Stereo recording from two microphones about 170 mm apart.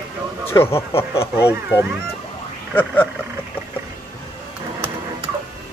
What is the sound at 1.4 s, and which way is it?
Speech, 10° right (ahead or behind).